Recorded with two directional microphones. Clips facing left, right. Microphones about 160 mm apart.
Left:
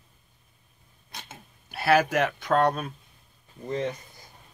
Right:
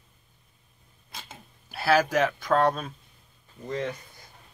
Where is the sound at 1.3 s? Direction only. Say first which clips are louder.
Left 1 dB; centre (ahead or behind).